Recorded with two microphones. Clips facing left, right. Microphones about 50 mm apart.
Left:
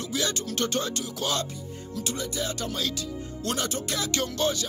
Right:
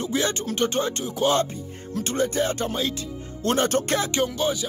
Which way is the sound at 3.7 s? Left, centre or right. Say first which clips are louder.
Right 9 dB; right.